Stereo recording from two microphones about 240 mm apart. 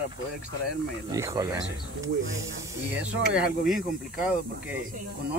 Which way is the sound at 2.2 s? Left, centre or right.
Right.